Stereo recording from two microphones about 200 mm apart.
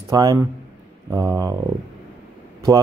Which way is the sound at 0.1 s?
20° right (ahead or behind).